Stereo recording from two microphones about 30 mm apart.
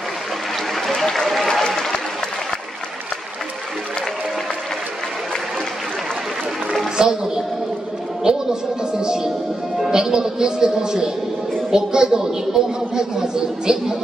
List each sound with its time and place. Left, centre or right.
0.9 s applause: centre
7.0 s music: right
8.2 s a sound: centre
9.8 s music: centre
11.7 s a woman's voice: right